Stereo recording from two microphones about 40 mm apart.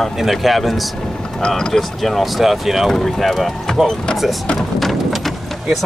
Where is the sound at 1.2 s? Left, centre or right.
Left.